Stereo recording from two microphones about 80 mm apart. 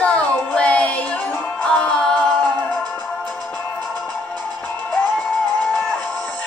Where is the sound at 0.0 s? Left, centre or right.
Centre.